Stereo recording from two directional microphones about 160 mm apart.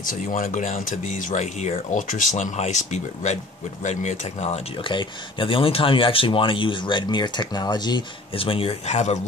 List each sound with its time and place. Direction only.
0.0 s speech: 60° left (ahead or behind)